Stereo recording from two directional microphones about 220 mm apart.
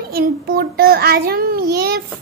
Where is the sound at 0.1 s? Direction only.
45° right (ahead or behind).